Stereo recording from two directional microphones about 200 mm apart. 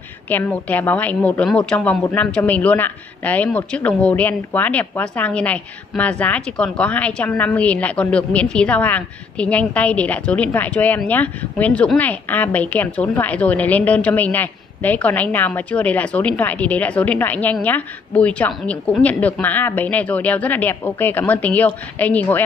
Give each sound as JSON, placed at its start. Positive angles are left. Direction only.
{"t": 0.3, "sound": "speech", "side_deg": 10}